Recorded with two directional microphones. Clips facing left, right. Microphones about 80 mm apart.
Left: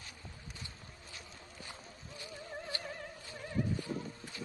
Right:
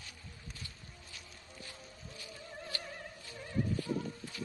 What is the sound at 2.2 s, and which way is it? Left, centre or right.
Music, left.